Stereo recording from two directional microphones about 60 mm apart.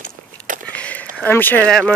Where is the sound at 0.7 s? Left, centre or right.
Left.